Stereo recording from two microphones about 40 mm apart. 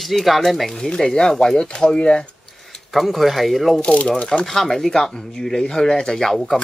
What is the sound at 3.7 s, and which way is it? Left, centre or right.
Speech, left.